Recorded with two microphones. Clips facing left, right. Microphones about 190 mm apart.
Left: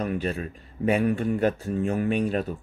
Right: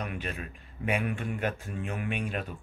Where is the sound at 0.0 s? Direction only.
40° left (ahead or behind).